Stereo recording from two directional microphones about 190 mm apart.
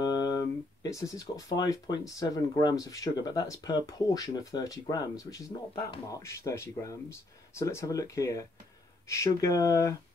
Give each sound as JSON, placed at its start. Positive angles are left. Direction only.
{"t": 0.0, "sound": "speech", "side_deg": 20}